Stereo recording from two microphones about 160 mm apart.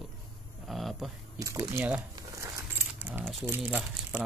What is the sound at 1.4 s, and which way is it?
Speech, 20° right (ahead or behind).